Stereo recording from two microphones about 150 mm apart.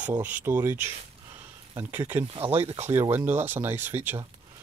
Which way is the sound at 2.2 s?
40° right (ahead or behind).